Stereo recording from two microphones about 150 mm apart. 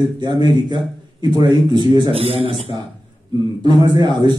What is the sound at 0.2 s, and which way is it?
A man's voice, 30° right (ahead or behind).